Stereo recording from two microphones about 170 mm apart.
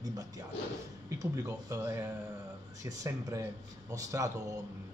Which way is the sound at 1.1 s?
20° right (ahead or behind).